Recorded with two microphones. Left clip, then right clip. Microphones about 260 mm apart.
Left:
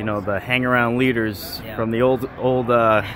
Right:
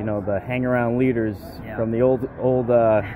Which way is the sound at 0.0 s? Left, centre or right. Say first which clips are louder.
Left 1 dB; left.